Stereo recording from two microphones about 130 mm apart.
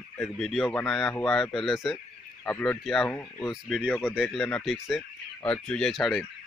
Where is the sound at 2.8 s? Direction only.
Centre (ahead or behind).